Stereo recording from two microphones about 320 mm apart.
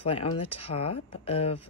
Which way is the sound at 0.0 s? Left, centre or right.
Centre.